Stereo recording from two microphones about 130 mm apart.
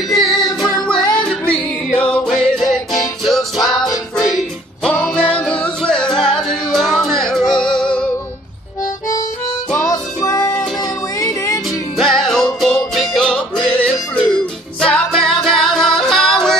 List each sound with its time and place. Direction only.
0.1 s music: 5° left (ahead or behind)
9.8 s music: 25° left (ahead or behind)
12.0 s music: centre (ahead or behind)